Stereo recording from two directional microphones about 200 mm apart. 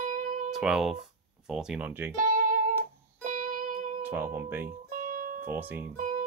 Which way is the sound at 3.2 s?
40° right (ahead or behind).